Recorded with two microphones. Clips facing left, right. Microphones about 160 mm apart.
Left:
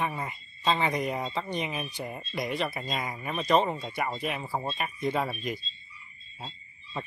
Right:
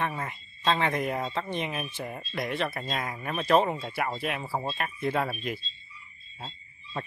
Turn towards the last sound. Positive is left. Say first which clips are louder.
# right 1 dB
turn(degrees=0)  # may be behind; listen again after turning